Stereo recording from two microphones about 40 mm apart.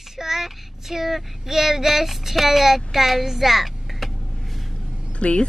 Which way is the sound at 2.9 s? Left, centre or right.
Centre.